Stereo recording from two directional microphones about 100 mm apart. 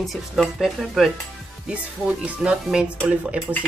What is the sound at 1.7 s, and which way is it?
Speech, 15° right (ahead or behind).